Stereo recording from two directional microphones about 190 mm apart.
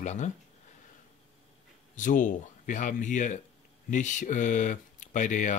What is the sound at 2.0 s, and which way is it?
Speech, 45° left (ahead or behind).